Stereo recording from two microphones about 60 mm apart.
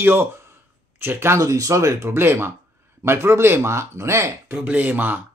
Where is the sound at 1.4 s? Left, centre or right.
Right.